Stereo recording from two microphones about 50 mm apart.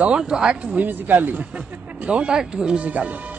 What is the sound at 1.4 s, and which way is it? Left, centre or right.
Speech, right.